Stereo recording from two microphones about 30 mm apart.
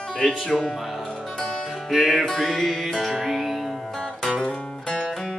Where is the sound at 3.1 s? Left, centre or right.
Centre.